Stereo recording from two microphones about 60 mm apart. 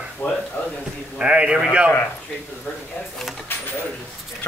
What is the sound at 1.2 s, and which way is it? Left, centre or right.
Speech, centre.